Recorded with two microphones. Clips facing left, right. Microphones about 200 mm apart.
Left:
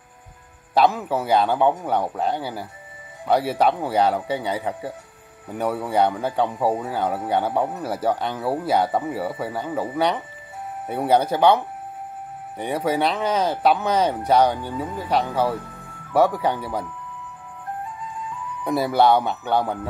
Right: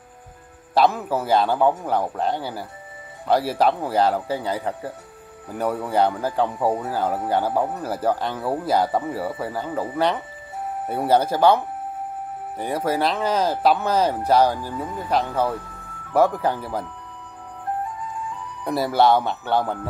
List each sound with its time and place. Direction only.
0.7 s speech: centre (ahead or behind)
18.6 s speech: centre (ahead or behind)